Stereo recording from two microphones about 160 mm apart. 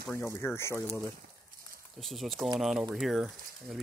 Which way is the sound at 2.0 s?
Centre (ahead or behind).